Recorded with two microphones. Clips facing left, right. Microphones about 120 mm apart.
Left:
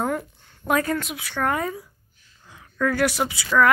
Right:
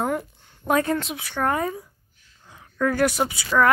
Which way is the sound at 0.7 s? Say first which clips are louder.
Right 1 dB; 25° right (ahead or behind).